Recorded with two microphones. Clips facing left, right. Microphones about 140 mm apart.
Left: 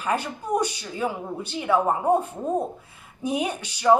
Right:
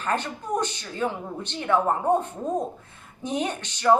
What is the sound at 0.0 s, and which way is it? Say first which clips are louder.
Speech: left 1 dB; 10° left (ahead or behind).